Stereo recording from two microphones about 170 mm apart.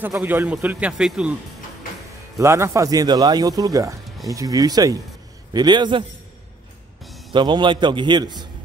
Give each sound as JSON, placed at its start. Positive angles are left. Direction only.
{"t": 0.0, "sound": "a man's voice", "side_deg": -10}
{"t": 2.3, "sound": "speech", "side_deg": -15}
{"t": 7.3, "sound": "speech", "side_deg": -25}